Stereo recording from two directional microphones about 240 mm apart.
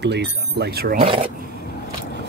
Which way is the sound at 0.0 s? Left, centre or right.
Right.